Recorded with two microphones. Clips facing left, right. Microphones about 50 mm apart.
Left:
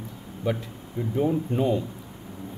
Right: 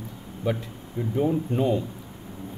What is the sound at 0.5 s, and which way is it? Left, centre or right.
Speech, centre.